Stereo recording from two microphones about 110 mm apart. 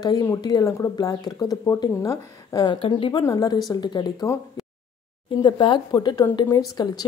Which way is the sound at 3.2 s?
35° left (ahead or behind).